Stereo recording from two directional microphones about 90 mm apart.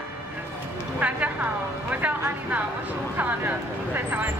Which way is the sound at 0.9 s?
15° right (ahead or behind).